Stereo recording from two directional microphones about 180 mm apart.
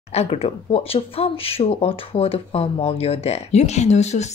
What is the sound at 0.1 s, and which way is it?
Speech, 35° left (ahead or behind).